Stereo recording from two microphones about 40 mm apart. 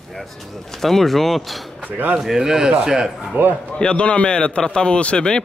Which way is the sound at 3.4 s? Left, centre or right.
Right.